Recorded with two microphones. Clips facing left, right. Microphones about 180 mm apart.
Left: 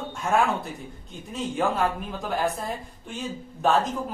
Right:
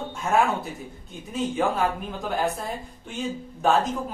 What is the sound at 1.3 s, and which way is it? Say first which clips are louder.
A man's voice: right 1 dB; centre (ahead or behind).